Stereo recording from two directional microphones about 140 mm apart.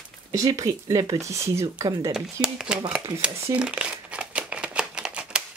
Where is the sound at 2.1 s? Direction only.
5° right (ahead or behind).